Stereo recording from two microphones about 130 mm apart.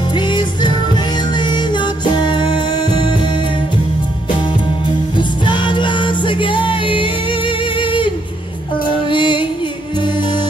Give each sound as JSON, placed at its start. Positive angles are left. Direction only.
{"t": 0.1, "sound": "music", "side_deg": 35}
{"t": 5.1, "sound": "music", "side_deg": 35}
{"t": 8.8, "sound": "female singing", "side_deg": 40}
{"t": 9.9, "sound": "music", "side_deg": 35}